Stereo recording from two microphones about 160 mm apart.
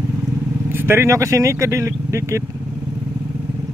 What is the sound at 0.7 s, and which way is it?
Speech, 15° right (ahead or behind).